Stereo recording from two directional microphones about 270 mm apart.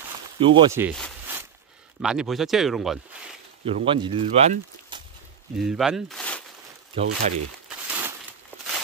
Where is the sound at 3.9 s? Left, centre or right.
Centre.